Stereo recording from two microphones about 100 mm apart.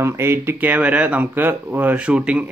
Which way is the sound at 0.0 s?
25° right (ahead or behind).